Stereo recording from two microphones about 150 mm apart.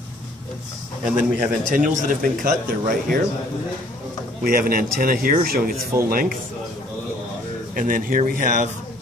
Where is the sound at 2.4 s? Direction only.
65° right (ahead or behind).